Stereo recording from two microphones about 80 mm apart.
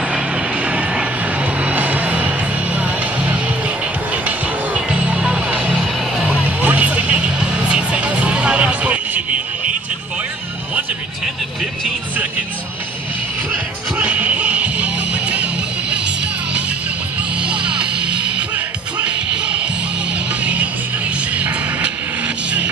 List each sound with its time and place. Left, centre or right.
0.7 s music: centre
4.7 s music: centre
13.9 s music: centre
17.4 s music: centre
21.4 s music: centre